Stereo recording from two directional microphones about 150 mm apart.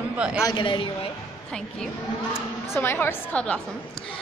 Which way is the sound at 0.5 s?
35° left (ahead or behind).